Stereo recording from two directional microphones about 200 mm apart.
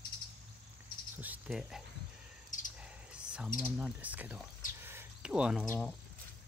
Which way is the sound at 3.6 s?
5° right (ahead or behind).